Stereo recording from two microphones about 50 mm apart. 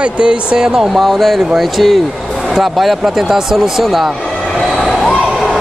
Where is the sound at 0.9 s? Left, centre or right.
Centre.